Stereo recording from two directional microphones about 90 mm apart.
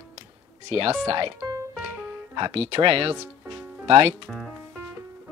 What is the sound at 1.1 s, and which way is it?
Speech, 75° right (ahead or behind).